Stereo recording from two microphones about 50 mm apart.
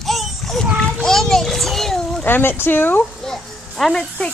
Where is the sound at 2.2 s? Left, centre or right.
Left.